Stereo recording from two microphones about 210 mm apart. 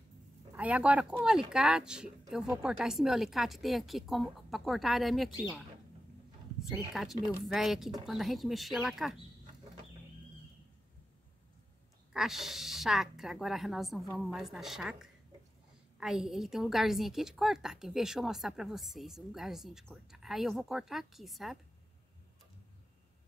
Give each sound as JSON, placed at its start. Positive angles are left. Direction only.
{"t": 0.5, "sound": "a woman's voice", "side_deg": -5}
{"t": 6.7, "sound": "a woman's voice", "side_deg": 0}
{"t": 12.1, "sound": "a woman's voice", "side_deg": 0}